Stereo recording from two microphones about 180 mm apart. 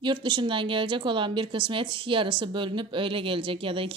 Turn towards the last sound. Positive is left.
turn(degrees=-30)  # may be behind; listen again after turning